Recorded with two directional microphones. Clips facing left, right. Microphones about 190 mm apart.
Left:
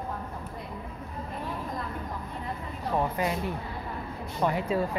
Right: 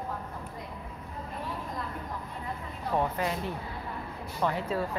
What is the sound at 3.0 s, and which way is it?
Speech, 15° left (ahead or behind).